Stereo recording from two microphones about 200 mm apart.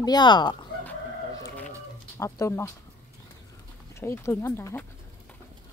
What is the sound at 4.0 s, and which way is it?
Speech, 15° left (ahead or behind).